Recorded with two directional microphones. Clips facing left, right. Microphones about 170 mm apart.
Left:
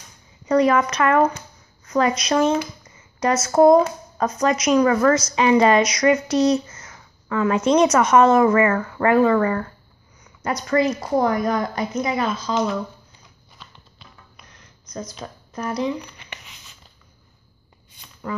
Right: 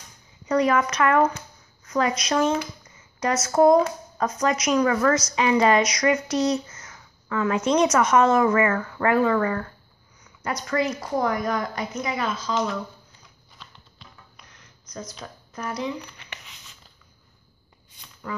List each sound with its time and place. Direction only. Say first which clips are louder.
0.5 s a woman's voice: left 4 dB; 30° left (ahead or behind)
8.5 s a woman's voice: left 4 dB; 40° left (ahead or behind)
10.7 s a woman's voice: left 6 dB; 30° left (ahead or behind)
13.6 s a sound: left 1 dB; 10° left (ahead or behind)
15.0 s a woman's voice: left 4 dB; 35° left (ahead or behind)